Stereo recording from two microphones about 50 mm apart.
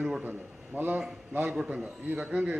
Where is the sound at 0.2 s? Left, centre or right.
Right.